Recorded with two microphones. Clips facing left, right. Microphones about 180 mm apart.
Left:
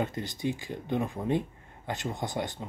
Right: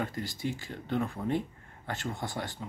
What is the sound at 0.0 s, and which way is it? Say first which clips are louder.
Speech: left 3 dB; 20° left (ahead or behind).